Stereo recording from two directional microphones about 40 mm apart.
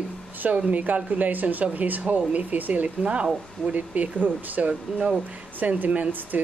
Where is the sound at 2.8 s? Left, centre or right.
Right.